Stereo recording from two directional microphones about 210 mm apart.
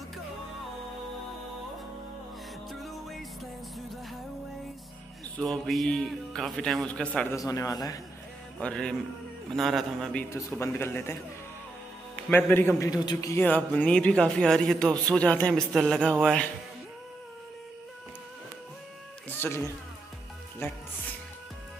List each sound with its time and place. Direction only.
2.7 s music: centre (ahead or behind)
5.4 s a man's voice: centre (ahead or behind)
7.2 s a man's voice: 15° left (ahead or behind)
8.5 s a man's voice: 5° left (ahead or behind)
10.3 s a man's voice: 10° left (ahead or behind)
12.3 s a man's voice: 10° left (ahead or behind)
19.2 s music: 10° left (ahead or behind)